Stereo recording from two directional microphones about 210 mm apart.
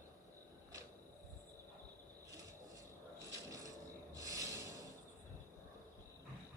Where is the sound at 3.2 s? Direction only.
15° right (ahead or behind).